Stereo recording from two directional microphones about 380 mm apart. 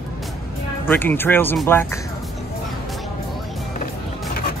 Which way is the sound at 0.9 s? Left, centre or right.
Centre.